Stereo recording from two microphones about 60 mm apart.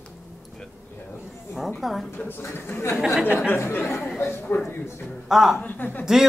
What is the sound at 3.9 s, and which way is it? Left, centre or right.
Speech, centre.